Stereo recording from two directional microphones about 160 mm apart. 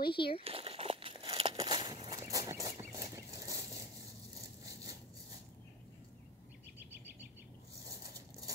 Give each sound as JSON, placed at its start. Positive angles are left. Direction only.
{"t": 0.1, "sound": "speech", "side_deg": 30}
{"t": 0.4, "sound": "crumpling", "side_deg": -35}
{"t": 2.0, "sound": "a sound", "side_deg": -20}